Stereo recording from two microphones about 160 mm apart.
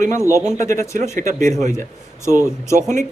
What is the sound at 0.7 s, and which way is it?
Speech, 50° right (ahead or behind).